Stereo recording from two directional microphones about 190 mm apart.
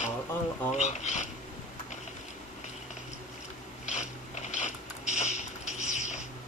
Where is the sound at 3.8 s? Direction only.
35° left (ahead or behind).